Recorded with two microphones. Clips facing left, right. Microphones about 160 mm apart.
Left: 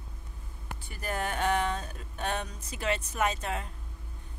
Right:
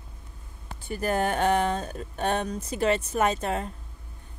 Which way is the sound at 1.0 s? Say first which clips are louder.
Right 6 dB; 35° right (ahead or behind).